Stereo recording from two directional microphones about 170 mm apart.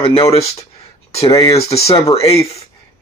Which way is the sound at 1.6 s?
35° left (ahead or behind).